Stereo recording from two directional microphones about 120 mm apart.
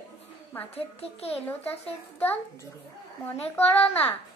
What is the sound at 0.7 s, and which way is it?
Child singing, 60° left (ahead or behind).